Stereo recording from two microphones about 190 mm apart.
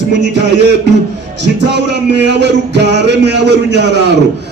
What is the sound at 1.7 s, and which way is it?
Speech, 65° right (ahead or behind).